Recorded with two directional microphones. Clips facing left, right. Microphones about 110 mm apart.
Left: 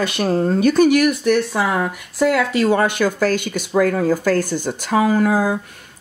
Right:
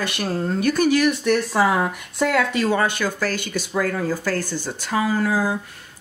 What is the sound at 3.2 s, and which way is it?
Speech, 20° left (ahead or behind).